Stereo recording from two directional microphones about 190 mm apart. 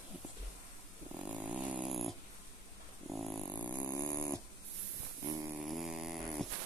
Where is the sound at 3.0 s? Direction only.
Centre (ahead or behind).